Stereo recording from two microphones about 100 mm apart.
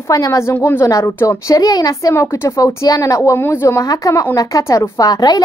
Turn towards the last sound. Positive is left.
turn(degrees=40)  # may be behind; listen again after turning